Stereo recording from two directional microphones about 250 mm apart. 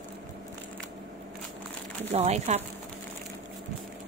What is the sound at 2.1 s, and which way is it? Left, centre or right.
Speech, right.